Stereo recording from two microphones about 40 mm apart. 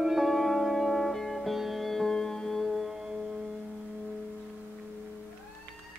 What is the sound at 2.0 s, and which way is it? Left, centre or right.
Music, centre.